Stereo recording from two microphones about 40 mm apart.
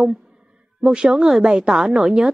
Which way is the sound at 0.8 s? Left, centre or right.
Right.